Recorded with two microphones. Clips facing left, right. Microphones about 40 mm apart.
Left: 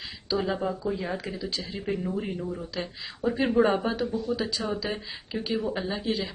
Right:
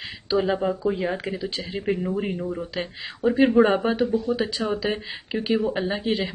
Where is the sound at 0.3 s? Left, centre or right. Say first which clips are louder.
Right 5 dB; right.